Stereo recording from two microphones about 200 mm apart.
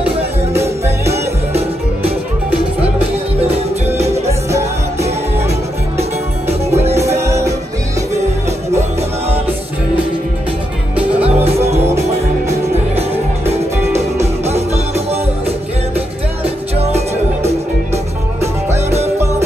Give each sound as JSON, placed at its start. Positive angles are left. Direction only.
{"t": 0.6, "sound": "music", "side_deg": -15}
{"t": 3.4, "sound": "music", "side_deg": -30}
{"t": 4.3, "sound": "music", "side_deg": -15}
{"t": 5.9, "sound": "music", "side_deg": -30}
{"t": 7.2, "sound": "music", "side_deg": -15}
{"t": 11.1, "sound": "music", "side_deg": -30}
{"t": 13.5, "sound": "music", "side_deg": -30}
{"t": 18.7, "sound": "music", "side_deg": -35}